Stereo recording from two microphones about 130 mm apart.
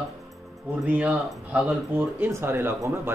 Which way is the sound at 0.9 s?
10° right (ahead or behind).